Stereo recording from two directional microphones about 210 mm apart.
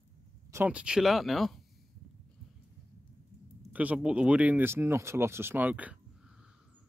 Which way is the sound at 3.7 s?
5° right (ahead or behind).